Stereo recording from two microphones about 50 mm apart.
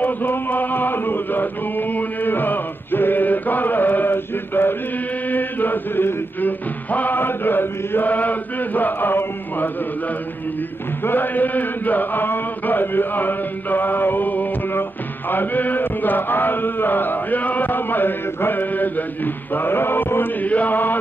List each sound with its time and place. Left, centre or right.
0.0 s chant: left
11.1 s chant: left
14.7 s music: left
20.4 s chant: left